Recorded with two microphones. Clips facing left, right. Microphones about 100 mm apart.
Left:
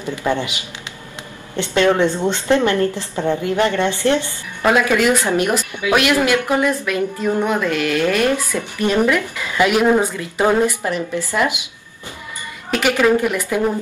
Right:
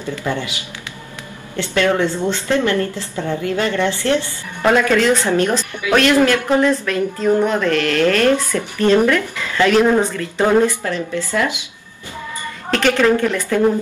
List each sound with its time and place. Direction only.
0.0 s a woman's voice: 20° left (ahead or behind)
1.6 s a woman's voice: 20° left (ahead or behind)
12.7 s speech: 10° left (ahead or behind)